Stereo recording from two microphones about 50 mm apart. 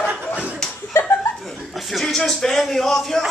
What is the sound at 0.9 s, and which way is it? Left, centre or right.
Chuckle, left.